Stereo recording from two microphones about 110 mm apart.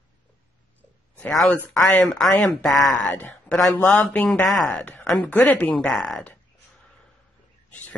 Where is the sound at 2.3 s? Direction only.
5° left (ahead or behind).